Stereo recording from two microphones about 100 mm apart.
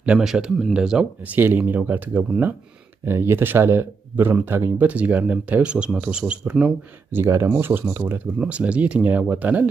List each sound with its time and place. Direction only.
0.0 s speech: 10° right (ahead or behind)
1.4 s speech: 20° right (ahead or behind)
7.1 s speech: 25° right (ahead or behind)
8.0 s speech: 10° right (ahead or behind)